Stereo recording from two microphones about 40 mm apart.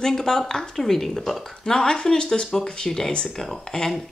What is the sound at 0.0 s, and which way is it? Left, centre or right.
Speech, centre.